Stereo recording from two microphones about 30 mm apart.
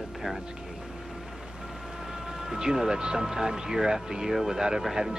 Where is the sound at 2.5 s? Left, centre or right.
Centre.